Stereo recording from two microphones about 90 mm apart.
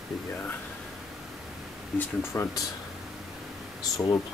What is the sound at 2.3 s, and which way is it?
Speech, 30° left (ahead or behind).